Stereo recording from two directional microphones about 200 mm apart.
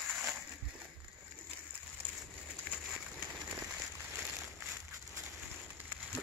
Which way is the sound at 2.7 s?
5° left (ahead or behind).